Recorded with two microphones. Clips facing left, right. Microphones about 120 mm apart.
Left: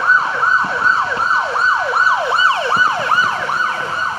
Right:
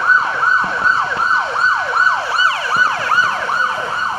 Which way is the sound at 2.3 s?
25° left (ahead or behind).